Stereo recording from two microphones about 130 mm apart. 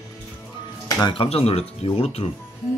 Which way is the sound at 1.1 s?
50° left (ahead or behind).